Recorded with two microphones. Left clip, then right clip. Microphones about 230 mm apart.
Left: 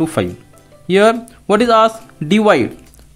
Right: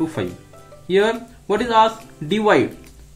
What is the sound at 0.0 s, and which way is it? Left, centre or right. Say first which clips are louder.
Speech: left 6 dB; left.